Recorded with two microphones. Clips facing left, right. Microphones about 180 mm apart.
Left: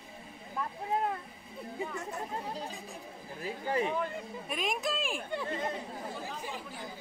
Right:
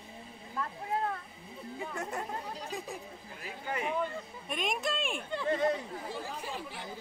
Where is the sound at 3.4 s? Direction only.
35° left (ahead or behind).